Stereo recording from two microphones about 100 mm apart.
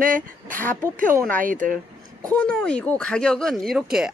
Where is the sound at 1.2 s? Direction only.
10° left (ahead or behind); by 4.1 s 5° right (ahead or behind).